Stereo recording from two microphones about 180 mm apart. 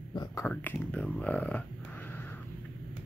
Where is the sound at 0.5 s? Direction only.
10° left (ahead or behind).